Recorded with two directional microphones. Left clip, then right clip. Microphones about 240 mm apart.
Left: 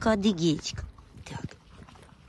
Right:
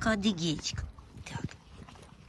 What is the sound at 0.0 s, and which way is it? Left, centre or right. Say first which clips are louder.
Speech: left 5 dB; left.